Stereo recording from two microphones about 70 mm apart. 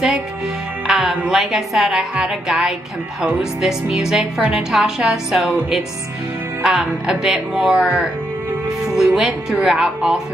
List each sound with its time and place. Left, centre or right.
0.8 s music: centre
1.4 s a woman's voice: centre
7.6 s speech: centre